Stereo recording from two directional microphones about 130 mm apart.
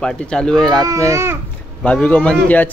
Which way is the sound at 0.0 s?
5° left (ahead or behind).